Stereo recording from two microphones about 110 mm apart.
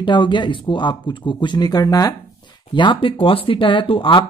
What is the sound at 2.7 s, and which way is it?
Speech, 45° left (ahead or behind).